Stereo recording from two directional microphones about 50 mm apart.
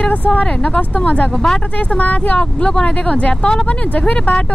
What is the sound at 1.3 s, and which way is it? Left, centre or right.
Speech, centre.